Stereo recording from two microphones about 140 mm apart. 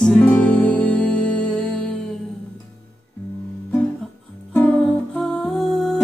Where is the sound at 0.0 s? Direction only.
10° left (ahead or behind).